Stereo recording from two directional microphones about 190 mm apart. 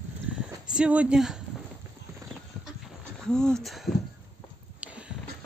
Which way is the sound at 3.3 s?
5° left (ahead or behind).